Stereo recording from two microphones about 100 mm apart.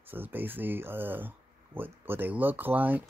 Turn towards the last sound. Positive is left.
turn(degrees=-15)  # may be behind; listen again after turning